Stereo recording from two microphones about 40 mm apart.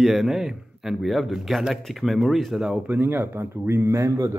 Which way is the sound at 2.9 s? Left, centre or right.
Right.